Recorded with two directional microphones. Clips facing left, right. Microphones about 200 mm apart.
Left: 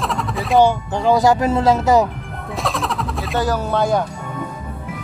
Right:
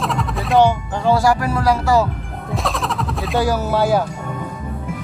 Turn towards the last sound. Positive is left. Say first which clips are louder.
# right 1 dB
turn(degrees=-5)  # may be behind; listen again after turning